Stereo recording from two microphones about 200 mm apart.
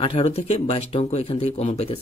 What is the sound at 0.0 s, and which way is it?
Speech, 30° left (ahead or behind).